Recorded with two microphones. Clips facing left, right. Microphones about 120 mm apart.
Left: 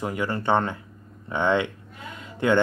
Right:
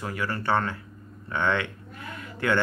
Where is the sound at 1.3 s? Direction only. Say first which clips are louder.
Left 4 dB; 20° left (ahead or behind).